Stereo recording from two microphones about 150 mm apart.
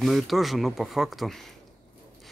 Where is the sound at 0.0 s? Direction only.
Centre (ahead or behind).